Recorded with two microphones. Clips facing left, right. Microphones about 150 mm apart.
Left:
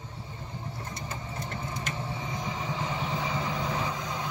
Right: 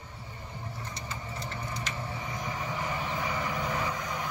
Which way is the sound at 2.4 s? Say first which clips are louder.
Even; 20° left (ahead or behind).